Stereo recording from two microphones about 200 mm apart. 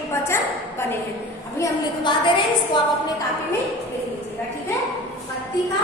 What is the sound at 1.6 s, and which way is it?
Speech, 25° left (ahead or behind).